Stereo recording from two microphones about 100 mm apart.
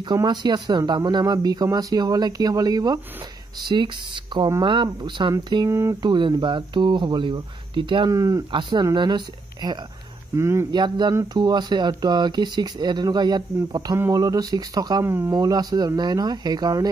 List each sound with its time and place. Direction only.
0.0 s speech: 45° right (ahead or behind)
5.7 s speech: 30° right (ahead or behind)
6.0 s speech: 50° right (ahead or behind)
8.1 s speech: 35° right (ahead or behind)
8.5 s speech: 55° right (ahead or behind)
10.3 s speech: 25° right (ahead or behind)
10.7 s speech: 50° right (ahead or behind)
15.0 s speech: 25° right (ahead or behind)
15.3 s speech: 40° right (ahead or behind)